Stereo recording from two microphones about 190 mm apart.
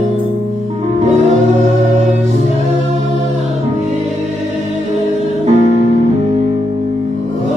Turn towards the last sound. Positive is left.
turn(degrees=-40)  # may be behind; listen again after turning